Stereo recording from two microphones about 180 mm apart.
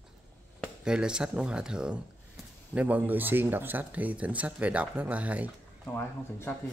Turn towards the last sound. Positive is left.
turn(degrees=10)  # may be behind; listen again after turning